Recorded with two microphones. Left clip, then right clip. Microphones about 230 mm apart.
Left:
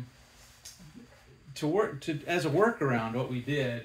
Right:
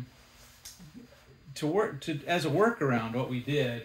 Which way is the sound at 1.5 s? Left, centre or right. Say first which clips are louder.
Even; centre.